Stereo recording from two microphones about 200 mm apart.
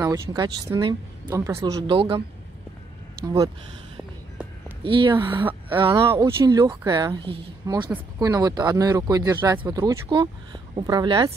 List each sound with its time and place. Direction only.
0.0 s speech: 15° right (ahead or behind)
4.8 s speech: 25° right (ahead or behind)